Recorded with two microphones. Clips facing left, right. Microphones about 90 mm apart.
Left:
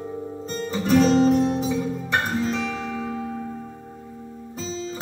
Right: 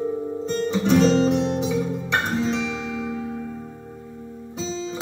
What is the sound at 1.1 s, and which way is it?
Guitar, 40° left (ahead or behind).